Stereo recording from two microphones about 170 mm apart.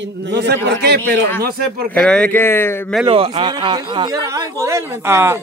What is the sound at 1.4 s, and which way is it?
Speech, 60° right (ahead or behind).